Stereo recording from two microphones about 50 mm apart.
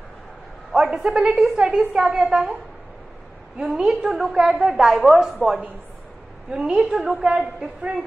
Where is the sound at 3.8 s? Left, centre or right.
Centre.